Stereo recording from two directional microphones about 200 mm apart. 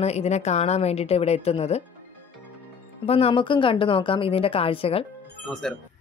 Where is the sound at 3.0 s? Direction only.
30° left (ahead or behind).